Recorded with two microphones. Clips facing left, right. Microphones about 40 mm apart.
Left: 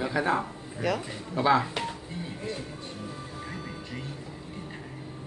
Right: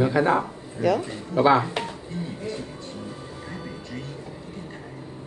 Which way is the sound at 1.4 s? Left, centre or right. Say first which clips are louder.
Right 6 dB; right.